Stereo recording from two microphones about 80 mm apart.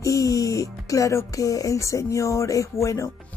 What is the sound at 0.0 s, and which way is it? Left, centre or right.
Speech, left.